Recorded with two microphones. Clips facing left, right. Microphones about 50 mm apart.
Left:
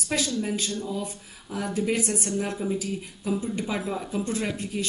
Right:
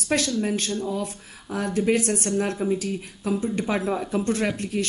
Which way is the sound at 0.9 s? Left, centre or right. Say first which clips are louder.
Right 3 dB; right.